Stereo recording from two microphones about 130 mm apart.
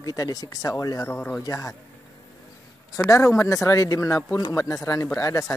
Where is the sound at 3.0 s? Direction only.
25° left (ahead or behind).